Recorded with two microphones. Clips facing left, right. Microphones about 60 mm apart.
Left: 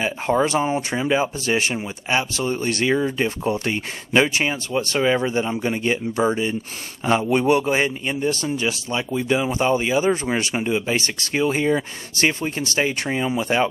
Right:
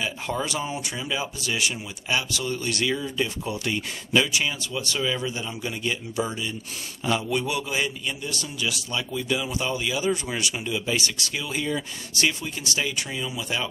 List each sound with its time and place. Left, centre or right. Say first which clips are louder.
0.0 s a man's voice: left 8 dB; left